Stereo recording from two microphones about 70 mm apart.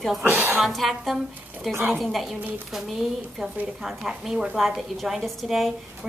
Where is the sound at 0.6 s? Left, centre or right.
Centre.